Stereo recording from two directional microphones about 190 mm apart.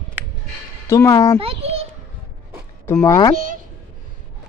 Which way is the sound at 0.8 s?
15° left (ahead or behind).